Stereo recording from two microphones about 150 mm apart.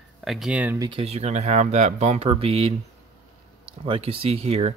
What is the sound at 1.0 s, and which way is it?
Speech, 45° right (ahead or behind).